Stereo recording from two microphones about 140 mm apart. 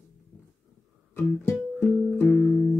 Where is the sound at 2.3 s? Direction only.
10° right (ahead or behind).